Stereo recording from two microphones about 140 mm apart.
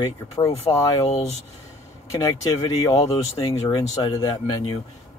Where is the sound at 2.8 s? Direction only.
25° left (ahead or behind).